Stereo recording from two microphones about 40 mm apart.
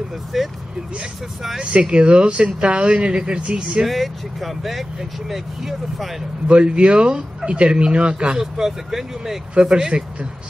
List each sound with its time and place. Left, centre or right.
0.3 s speech: centre
1.6 s speech: right
3.8 s speech: centre
6.4 s speech: right
8.4 s speech: centre
9.6 s speech: centre